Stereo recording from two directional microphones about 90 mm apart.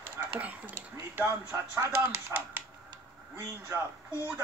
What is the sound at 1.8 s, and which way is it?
Speech, 30° right (ahead or behind).